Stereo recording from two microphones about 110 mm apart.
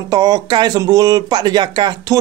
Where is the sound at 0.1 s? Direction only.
35° right (ahead or behind).